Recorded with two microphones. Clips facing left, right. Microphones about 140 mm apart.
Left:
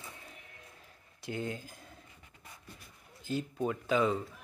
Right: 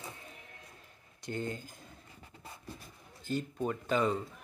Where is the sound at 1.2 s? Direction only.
5° left (ahead or behind).